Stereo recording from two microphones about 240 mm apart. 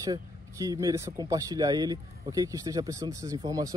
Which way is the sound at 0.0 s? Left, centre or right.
Centre.